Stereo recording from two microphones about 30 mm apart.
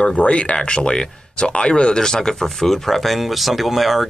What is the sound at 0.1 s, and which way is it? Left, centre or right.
Speech, left.